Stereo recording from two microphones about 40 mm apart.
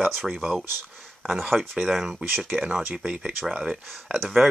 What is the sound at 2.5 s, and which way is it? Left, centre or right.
Speech, centre.